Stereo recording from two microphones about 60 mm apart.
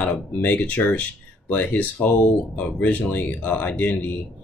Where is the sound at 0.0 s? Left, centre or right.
Left.